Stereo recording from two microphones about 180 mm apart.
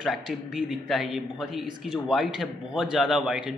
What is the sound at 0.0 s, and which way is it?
A man's voice, centre (ahead or behind).